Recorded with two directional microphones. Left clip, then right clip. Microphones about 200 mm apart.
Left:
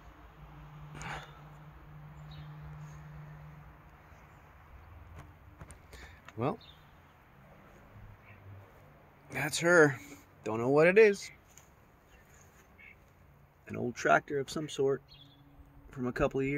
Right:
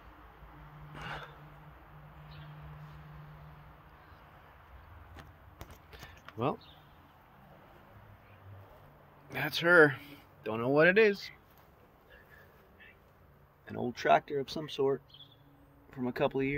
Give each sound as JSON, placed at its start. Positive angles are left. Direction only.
{"t": 0.9, "sound": "a sound", "side_deg": 10}
{"t": 6.3, "sound": "speech", "side_deg": 5}
{"t": 9.3, "sound": "speech", "side_deg": 10}
{"t": 13.7, "sound": "speech", "side_deg": 15}
{"t": 15.9, "sound": "speech", "side_deg": 20}